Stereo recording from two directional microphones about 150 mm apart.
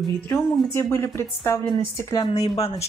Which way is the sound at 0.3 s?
15° left (ahead or behind).